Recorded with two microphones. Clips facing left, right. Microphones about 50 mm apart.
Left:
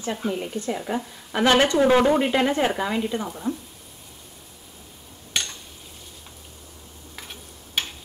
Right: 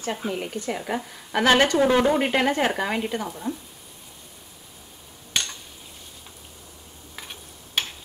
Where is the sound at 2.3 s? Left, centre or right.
Right.